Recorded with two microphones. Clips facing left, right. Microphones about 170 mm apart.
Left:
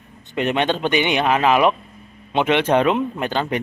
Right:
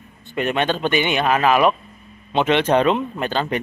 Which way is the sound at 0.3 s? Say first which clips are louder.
Left 1 dB; 20° left (ahead or behind).